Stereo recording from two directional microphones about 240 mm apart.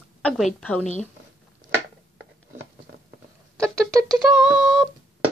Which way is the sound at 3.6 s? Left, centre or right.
Centre.